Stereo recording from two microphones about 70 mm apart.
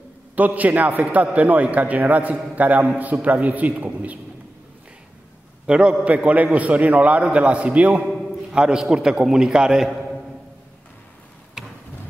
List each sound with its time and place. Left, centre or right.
0.4 s a man's voice: right
5.7 s a man's voice: centre
11.6 s a sound: centre